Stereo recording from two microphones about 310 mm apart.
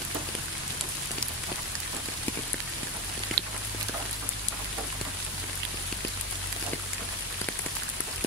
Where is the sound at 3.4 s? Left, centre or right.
Right.